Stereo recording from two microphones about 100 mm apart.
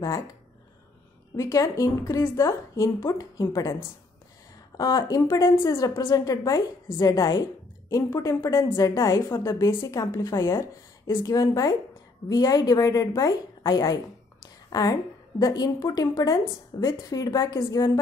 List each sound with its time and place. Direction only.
1.3 s a woman's voice: 35° left (ahead or behind)
4.7 s a woman's voice: 35° left (ahead or behind)